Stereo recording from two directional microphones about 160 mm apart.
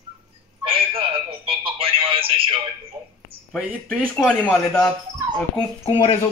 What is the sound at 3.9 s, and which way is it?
Speech, 5° left (ahead or behind).